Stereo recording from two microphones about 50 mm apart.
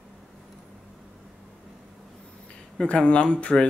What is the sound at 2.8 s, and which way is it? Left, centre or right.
Speech, left.